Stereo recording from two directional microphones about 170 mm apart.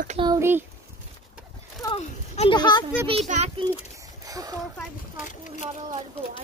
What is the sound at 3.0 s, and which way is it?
Speech, 40° right (ahead or behind).